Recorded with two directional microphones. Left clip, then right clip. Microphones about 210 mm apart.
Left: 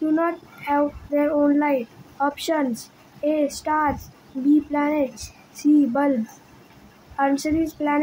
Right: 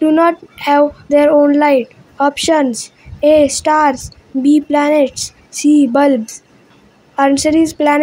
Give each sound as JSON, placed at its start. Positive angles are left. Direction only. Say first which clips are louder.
{"t": 0.0, "sound": "speech", "louder": "right 11 dB", "side_deg": -40}
{"t": 7.2, "sound": "speech", "louder": "right 10 dB", "side_deg": -40}